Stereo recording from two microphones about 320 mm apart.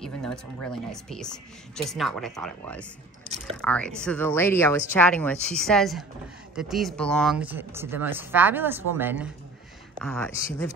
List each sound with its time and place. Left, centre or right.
0.0 s speech: centre
3.3 s speech: centre
3.6 s speech: centre